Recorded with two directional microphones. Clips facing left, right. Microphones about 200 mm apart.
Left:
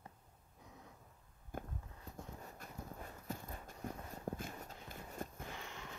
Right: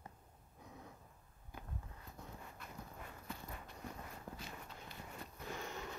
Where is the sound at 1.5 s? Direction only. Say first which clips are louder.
Left 8 dB; 50° left (ahead or behind).